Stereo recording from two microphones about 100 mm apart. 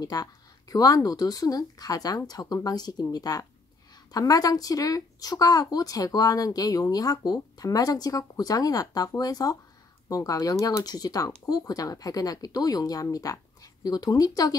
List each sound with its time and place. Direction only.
0.0 s speech: 40° left (ahead or behind)